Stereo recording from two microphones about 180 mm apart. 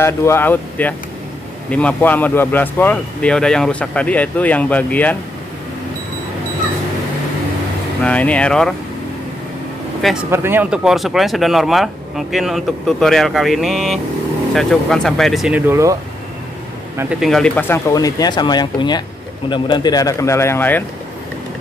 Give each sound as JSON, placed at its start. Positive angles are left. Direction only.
{"t": 0.0, "sound": "speech", "side_deg": 15}
{"t": 8.0, "sound": "speech", "side_deg": 5}
{"t": 10.3, "sound": "speech", "side_deg": -10}
{"t": 15.7, "sound": "speech", "side_deg": -15}
{"t": 17.2, "sound": "speech", "side_deg": 5}